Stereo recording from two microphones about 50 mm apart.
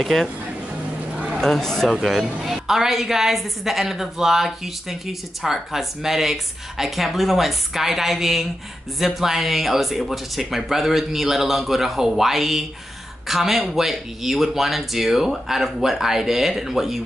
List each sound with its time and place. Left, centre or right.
0.0 s a woman's voice: centre
1.1 s a sound: centre
1.4 s speech: centre
2.0 s a woman's voice: centre